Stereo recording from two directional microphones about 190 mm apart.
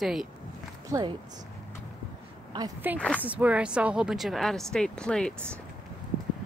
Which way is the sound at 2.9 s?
10° right (ahead or behind).